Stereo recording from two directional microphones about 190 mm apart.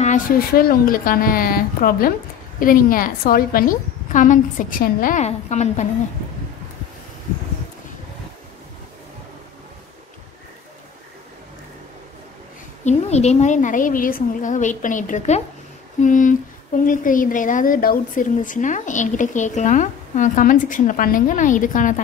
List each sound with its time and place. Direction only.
0.0 s a woman's voice: 45° left (ahead or behind)
12.8 s a woman's voice: 35° left (ahead or behind)